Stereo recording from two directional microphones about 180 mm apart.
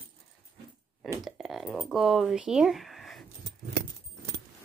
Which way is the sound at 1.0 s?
Centre (ahead or behind).